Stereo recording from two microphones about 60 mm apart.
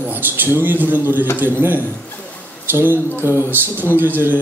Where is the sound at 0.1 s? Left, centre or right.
Right.